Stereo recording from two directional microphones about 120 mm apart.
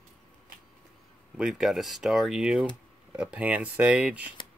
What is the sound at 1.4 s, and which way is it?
Speech, 5° right (ahead or behind).